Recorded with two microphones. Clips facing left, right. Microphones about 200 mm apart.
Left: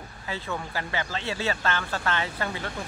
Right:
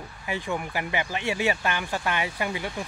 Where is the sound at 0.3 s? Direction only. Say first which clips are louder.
Right 3 dB; 15° right (ahead or behind).